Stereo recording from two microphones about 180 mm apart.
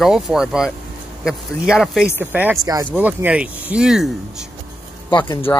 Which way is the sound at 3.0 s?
10° right (ahead or behind).